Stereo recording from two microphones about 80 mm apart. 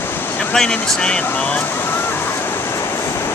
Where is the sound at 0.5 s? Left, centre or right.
Centre.